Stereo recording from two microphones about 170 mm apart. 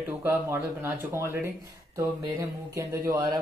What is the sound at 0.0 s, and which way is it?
Speech, 10° right (ahead or behind).